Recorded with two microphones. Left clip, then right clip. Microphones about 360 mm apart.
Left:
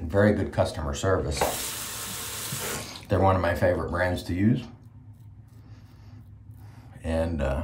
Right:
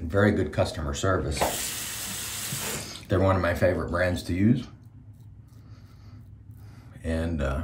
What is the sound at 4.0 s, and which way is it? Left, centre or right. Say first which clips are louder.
Speech: even; left.